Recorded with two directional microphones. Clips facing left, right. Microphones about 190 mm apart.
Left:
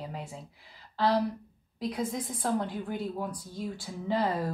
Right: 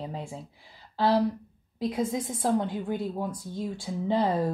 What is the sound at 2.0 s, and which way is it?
Speech, centre (ahead or behind).